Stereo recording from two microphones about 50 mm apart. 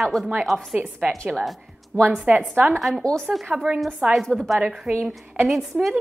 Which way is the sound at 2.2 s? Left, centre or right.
Right.